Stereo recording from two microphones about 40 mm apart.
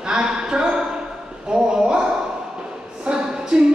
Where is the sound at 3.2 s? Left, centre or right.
Centre.